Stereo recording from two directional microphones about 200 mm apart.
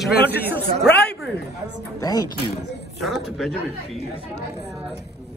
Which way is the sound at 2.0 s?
20° left (ahead or behind).